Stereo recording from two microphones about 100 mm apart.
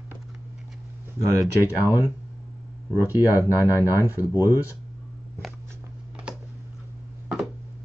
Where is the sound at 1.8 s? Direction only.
20° right (ahead or behind).